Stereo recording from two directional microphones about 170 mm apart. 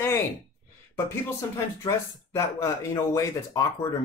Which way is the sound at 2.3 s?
20° left (ahead or behind).